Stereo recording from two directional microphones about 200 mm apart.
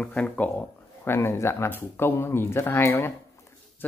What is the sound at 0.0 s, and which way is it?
Speech, 5° left (ahead or behind).